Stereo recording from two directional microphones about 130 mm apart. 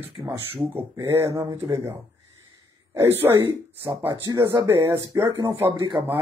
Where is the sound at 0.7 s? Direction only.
20° right (ahead or behind).